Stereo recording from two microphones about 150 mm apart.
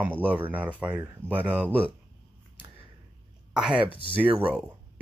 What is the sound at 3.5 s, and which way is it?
Speech, 5° right (ahead or behind).